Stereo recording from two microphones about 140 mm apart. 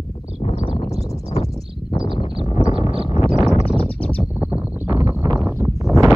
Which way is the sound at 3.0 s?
50° left (ahead or behind).